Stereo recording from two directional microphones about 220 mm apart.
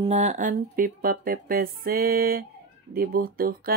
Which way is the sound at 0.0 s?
30° right (ahead or behind).